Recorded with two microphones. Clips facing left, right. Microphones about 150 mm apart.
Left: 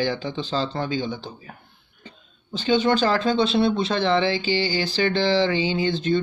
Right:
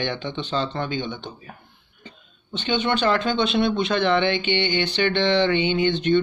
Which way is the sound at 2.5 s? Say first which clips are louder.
Left 3 dB; 35° left (ahead or behind).